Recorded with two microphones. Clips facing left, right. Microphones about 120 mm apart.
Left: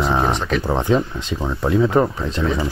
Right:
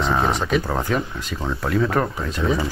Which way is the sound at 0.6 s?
20° left (ahead or behind).